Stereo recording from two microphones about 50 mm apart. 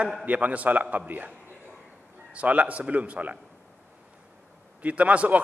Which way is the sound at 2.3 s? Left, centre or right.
Right.